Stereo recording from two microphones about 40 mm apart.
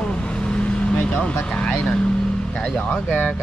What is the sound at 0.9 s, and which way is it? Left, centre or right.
Speech, left.